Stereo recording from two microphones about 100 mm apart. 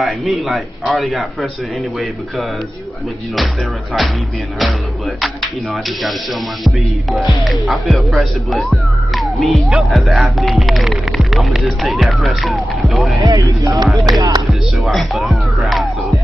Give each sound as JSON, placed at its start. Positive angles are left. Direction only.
{"t": 0.0, "sound": "speech", "side_deg": 0}
{"t": 5.2, "sound": "speech", "side_deg": 0}
{"t": 13.2, "sound": "speech", "side_deg": -40}
{"t": 14.5, "sound": "speech", "side_deg": 0}